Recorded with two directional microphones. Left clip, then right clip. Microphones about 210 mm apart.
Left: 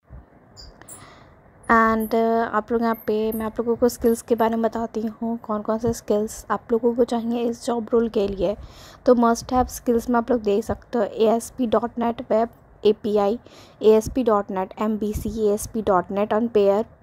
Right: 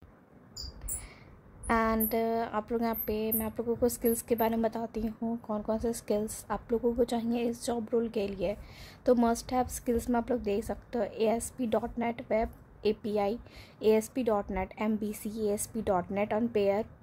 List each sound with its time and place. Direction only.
1.7 s a woman's voice: 20° left (ahead or behind)